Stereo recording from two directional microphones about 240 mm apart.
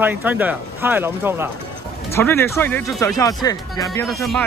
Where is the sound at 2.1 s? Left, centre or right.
Centre.